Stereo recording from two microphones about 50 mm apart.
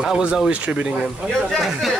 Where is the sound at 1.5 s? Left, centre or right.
Centre.